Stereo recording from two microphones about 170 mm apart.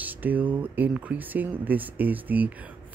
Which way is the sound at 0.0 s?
10° right (ahead or behind).